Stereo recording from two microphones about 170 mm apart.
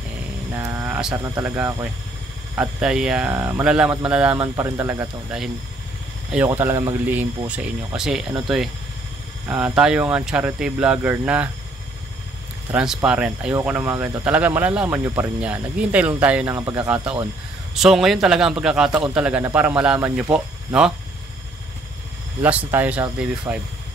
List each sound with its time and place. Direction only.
0.6 s speech: 15° right (ahead or behind)
6.3 s speech: 10° right (ahead or behind)
12.7 s a man's voice: 5° right (ahead or behind)
22.4 s speech: 10° right (ahead or behind)